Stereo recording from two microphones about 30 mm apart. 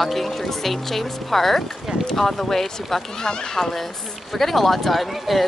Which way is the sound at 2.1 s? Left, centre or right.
Centre.